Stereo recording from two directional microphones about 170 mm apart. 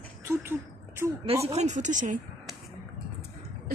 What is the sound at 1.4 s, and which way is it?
Speech, 40° right (ahead or behind).